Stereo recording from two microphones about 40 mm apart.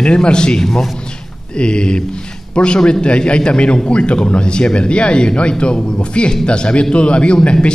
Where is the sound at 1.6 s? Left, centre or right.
Left.